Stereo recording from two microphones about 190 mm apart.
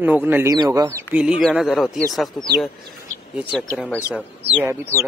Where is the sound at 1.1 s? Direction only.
5° right (ahead or behind).